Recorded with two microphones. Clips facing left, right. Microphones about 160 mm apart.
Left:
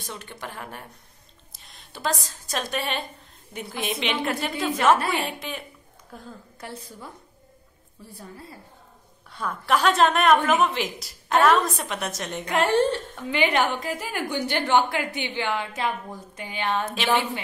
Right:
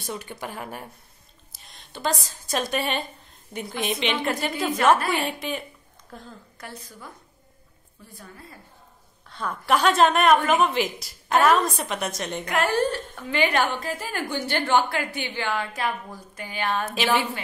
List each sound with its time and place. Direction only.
0.0 s a woman's voice: 10° right (ahead or behind)
6.1 s a woman's voice: 10° left (ahead or behind)
6.6 s a woman's voice: 25° left (ahead or behind)
9.3 s a woman's voice: 10° left (ahead or behind)
9.7 s a woman's voice: centre (ahead or behind)
12.4 s a woman's voice: 25° left (ahead or behind)
16.9 s a woman's voice: 5° right (ahead or behind)